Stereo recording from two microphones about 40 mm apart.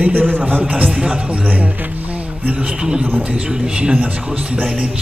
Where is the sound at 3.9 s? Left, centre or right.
Right.